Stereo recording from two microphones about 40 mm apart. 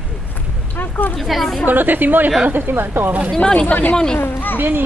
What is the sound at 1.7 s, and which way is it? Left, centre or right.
Speech, right.